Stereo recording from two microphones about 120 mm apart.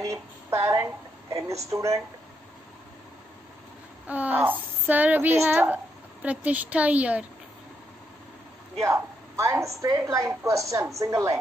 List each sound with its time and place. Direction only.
0.0 s a woman's voice: 25° right (ahead or behind)
4.1 s speech: 15° right (ahead or behind)
8.8 s a woman's voice: 25° right (ahead or behind)